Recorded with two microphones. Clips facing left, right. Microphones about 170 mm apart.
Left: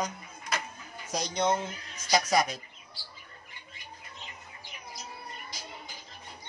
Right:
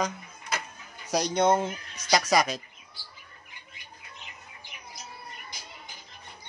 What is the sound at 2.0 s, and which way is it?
Speech, 90° right.